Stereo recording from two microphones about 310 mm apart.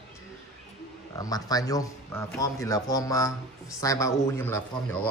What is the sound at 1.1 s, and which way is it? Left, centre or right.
A man's voice, centre.